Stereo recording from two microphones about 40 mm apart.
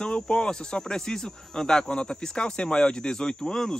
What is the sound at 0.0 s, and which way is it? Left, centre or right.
Speech, centre.